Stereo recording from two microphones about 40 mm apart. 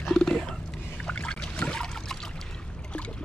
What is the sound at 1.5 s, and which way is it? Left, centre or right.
Trickle, left.